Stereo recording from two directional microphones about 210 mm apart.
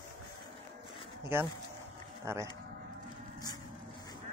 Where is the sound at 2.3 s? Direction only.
10° right (ahead or behind).